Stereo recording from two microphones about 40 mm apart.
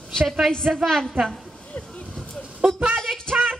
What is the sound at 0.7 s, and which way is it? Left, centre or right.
Speech, centre.